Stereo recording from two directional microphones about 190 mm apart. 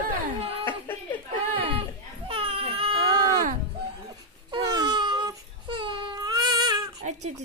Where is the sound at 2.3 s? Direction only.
30° right (ahead or behind).